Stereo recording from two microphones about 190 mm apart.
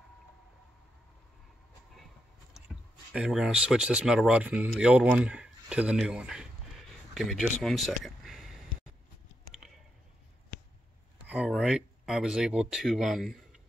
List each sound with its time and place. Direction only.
2.5 s speech: centre (ahead or behind)
11.2 s speech: 5° right (ahead or behind)